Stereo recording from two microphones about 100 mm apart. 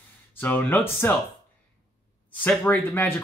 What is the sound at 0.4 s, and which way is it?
Speech, 20° left (ahead or behind).